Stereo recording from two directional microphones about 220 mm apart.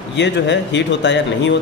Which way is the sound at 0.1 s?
55° left (ahead or behind).